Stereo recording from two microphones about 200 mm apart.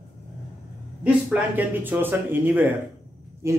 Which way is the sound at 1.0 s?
10° right (ahead or behind).